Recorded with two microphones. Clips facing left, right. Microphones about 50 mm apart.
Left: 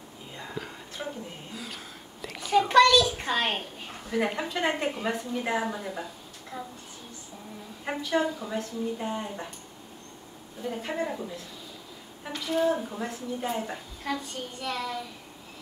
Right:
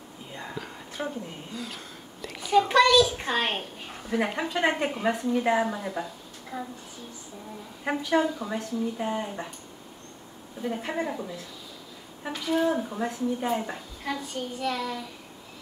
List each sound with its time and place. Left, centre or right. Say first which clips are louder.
0.6 s a sound: left 2 dB; centre
1.0 s a sound: right 4 dB; centre
2.8 s a woman's voice: even; centre
6.5 s a sound: right 3 dB; centre
7.8 s a woman's voice: right 3 dB; centre
10.6 s a woman's voice: right 2 dB; right
10.9 s a woman's voice: left 1 dB; centre
12.3 s a woman's voice: right 1 dB; centre
14.1 s child singing: right 2 dB; centre